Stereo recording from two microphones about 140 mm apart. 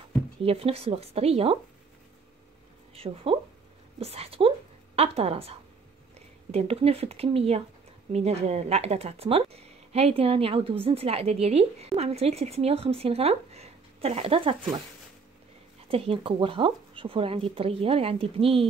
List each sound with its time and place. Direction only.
0.4 s speech: 45° right (ahead or behind)
2.9 s a woman's voice: 45° right (ahead or behind)
15.9 s speech: 45° right (ahead or behind)